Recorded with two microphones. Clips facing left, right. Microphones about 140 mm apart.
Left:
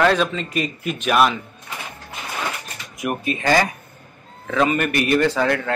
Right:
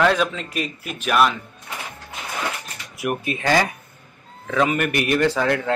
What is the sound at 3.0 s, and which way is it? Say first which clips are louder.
Speech: left 1 dB; 5° right (ahead or behind).